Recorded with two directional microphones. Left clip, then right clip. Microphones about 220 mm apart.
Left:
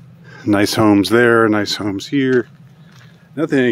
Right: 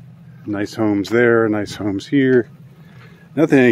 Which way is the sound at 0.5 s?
45° left (ahead or behind).